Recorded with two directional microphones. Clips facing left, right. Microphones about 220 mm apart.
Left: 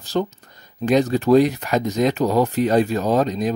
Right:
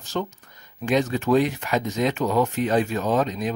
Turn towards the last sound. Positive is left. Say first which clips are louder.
# left 4 dB
turn(degrees=35)  # may be behind; listen again after turning